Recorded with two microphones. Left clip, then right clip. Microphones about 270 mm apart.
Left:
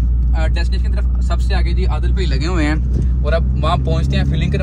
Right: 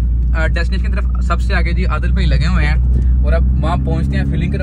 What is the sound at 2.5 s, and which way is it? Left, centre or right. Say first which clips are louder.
Speech: left 5 dB; left.